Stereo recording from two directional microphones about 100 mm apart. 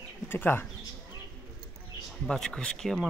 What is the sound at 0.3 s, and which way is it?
Speech, 20° left (ahead or behind).